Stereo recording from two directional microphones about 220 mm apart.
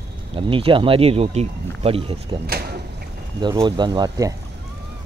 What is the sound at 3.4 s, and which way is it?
Speech, 20° right (ahead or behind).